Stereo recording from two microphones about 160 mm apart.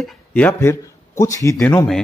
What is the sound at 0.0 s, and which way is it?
A man's voice, 10° left (ahead or behind).